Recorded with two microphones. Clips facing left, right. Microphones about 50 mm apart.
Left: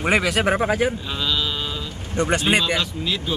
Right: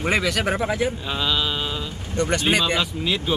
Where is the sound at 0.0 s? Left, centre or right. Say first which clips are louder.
Left 2 dB; left.